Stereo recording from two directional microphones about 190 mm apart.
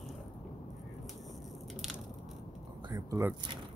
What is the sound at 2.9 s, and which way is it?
Speech, 20° right (ahead or behind).